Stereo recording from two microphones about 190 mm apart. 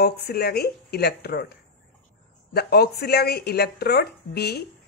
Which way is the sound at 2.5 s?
60° left (ahead or behind).